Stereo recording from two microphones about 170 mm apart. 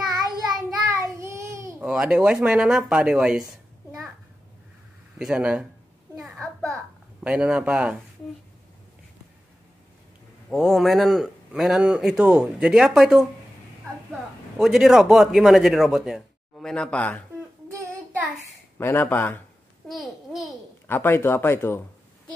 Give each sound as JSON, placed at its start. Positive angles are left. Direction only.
{"t": 0.3, "sound": "child singing", "side_deg": 0}
{"t": 0.8, "sound": "child singing", "side_deg": -15}
{"t": 1.8, "sound": "a sound", "side_deg": -5}
{"t": 2.4, "sound": "speech", "side_deg": -5}
{"t": 5.2, "sound": "speech", "side_deg": -5}
{"t": 6.2, "sound": "a sound", "side_deg": 0}
{"t": 7.2, "sound": "speech", "side_deg": -5}
{"t": 10.5, "sound": "speech", "side_deg": 0}
{"t": 14.6, "sound": "speech", "side_deg": 0}
{"t": 17.6, "sound": "child singing", "side_deg": -15}
{"t": 18.8, "sound": "speech", "side_deg": 15}
{"t": 19.9, "sound": "a child's voice", "side_deg": 0}
{"t": 20.8, "sound": "speech", "side_deg": 10}